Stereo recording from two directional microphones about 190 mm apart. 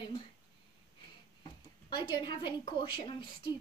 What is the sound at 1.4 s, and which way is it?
A woman's voice, 25° left (ahead or behind).